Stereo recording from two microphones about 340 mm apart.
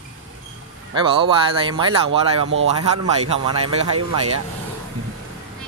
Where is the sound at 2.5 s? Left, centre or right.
Right.